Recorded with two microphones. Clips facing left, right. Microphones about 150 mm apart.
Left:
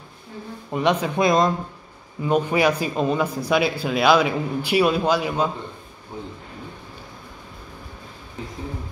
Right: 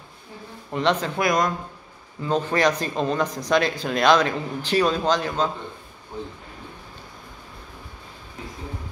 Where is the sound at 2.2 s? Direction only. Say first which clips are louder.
Left 2 dB; 10° left (ahead or behind).